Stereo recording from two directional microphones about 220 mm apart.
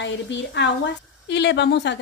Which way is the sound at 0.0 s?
55° left (ahead or behind).